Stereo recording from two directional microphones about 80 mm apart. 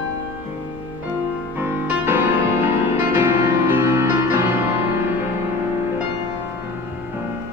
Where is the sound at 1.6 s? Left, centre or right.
Right.